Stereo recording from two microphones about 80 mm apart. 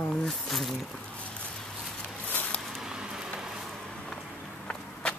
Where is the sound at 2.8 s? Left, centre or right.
Centre.